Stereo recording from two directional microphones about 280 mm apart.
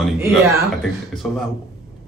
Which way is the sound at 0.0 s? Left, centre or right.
Centre.